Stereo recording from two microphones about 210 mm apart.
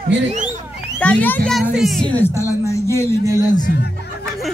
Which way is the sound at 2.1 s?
10° left (ahead or behind).